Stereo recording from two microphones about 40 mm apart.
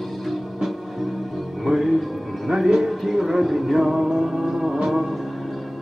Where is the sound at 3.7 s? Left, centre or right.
Centre.